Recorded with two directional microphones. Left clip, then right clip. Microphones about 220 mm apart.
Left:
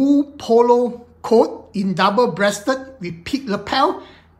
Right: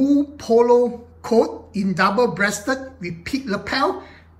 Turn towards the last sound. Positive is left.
turn(degrees=10)  # may be behind; listen again after turning